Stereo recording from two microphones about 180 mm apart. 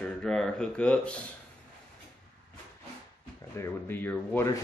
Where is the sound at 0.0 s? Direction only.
5° left (ahead or behind).